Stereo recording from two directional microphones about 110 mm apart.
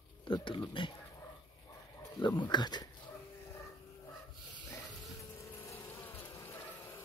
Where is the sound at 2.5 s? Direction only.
40° left (ahead or behind).